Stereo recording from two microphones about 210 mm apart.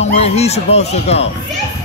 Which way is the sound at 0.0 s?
30° left (ahead or behind).